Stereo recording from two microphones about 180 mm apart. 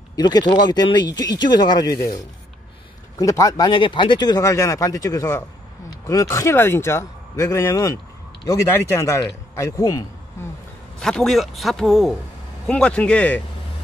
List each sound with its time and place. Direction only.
0.1 s speech: 20° left (ahead or behind)
3.2 s a man's voice: 20° left (ahead or behind)
11.0 s a man's voice: 5° left (ahead or behind)